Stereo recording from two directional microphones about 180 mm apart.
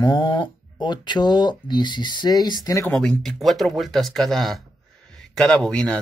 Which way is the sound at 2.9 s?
5° left (ahead or behind).